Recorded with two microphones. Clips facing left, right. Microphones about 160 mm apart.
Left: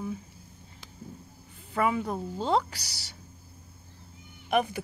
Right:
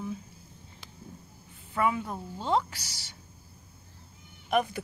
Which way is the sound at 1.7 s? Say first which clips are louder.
Left 1 dB; 35° left (ahead or behind).